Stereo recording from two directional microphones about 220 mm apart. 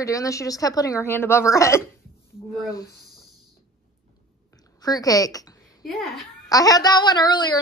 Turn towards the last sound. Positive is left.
turn(degrees=20)  # may be behind; listen again after turning